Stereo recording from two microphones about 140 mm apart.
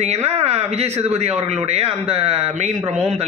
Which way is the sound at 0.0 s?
50° right (ahead or behind).